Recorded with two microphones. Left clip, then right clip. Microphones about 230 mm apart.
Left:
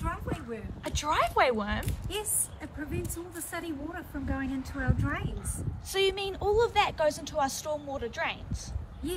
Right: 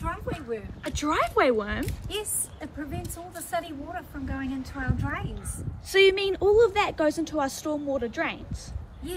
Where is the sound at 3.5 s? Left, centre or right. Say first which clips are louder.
Right 6 dB; centre.